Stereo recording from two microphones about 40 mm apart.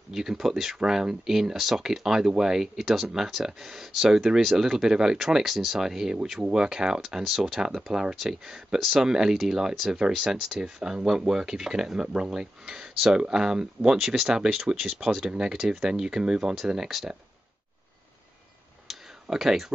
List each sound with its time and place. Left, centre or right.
0.1 s speech: centre
9.0 s speech: centre
18.9 s clicking: centre
19.3 s speech: centre